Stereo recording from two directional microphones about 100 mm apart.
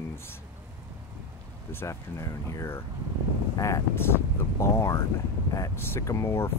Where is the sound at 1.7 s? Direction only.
25° left (ahead or behind).